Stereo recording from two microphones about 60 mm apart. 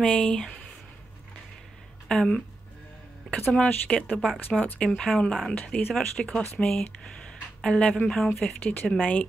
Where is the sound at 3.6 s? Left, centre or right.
Left.